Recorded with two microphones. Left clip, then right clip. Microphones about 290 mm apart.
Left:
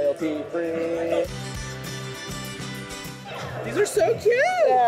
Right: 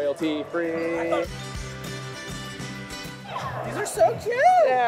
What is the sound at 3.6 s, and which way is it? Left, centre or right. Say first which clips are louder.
Speech: left 1 dB; centre.